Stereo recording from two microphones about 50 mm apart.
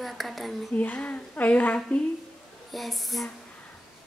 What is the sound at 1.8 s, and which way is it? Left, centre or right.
Speech, centre.